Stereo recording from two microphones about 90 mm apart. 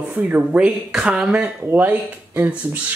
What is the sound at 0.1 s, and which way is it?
Speech, 20° right (ahead or behind).